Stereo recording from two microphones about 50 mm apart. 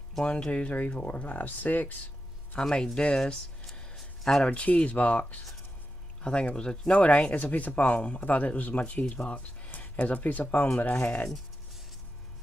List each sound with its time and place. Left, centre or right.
0.2 s speech: left
2.6 s speech: centre
3.6 s a sound: centre
4.5 s speech: left
6.2 s speech: centre